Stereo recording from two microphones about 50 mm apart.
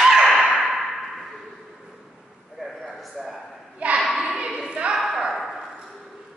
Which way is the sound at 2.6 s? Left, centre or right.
Centre.